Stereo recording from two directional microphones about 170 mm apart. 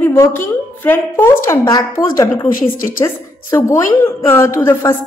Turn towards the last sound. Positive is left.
turn(degrees=15)  # may be behind; listen again after turning